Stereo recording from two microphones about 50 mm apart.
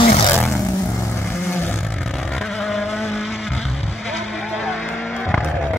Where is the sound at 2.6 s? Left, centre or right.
Centre.